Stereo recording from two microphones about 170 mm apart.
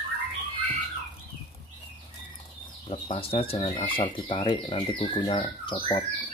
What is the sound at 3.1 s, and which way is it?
Speech, 35° left (ahead or behind).